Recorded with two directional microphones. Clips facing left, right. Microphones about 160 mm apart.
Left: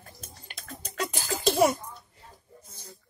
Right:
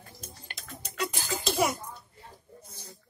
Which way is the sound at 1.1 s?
Centre (ahead or behind).